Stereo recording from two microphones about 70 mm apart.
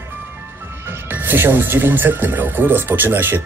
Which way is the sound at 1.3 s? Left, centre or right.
Right.